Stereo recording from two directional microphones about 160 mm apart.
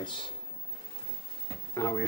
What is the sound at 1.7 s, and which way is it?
Speech, 20° left (ahead or behind).